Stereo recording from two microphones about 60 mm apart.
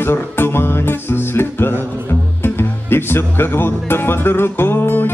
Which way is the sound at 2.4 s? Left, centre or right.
Left.